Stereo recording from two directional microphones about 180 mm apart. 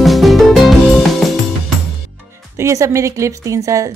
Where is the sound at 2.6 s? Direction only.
15° right (ahead or behind).